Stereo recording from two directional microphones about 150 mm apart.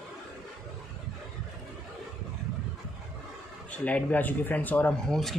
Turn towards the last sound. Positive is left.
turn(degrees=0)  # may be behind; listen again after turning